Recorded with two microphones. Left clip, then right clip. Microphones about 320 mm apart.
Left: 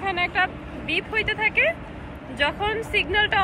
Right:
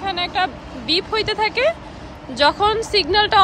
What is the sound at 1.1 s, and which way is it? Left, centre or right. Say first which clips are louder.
Speech: left 1 dB; centre.